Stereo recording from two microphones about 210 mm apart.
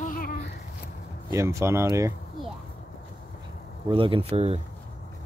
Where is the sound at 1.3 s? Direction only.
15° right (ahead or behind).